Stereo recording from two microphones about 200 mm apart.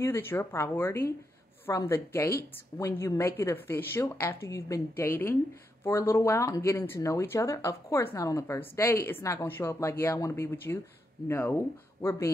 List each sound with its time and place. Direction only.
0.0 s a woman's voice: 10° left (ahead or behind)